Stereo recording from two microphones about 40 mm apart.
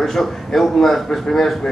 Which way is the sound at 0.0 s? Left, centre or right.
Centre.